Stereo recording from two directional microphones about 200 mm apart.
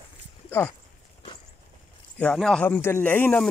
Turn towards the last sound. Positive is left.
turn(degrees=5)  # may be behind; listen again after turning